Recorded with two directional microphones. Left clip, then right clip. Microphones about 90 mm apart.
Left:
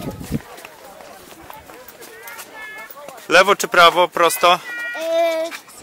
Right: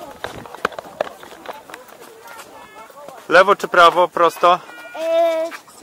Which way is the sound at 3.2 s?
30° left (ahead or behind).